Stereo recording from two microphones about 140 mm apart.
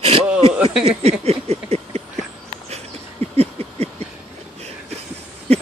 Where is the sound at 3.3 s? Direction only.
50° right (ahead or behind).